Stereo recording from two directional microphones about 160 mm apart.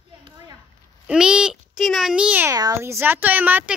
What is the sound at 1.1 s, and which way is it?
A child's voice, 5° right (ahead or behind).